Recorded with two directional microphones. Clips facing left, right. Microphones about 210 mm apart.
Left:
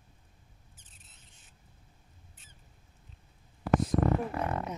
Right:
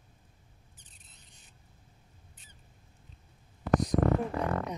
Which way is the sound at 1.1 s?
5° left (ahead or behind).